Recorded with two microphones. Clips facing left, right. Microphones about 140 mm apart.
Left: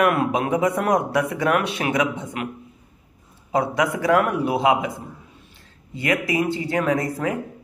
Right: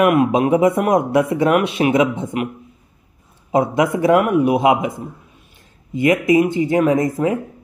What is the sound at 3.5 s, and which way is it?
A man's voice, 20° right (ahead or behind).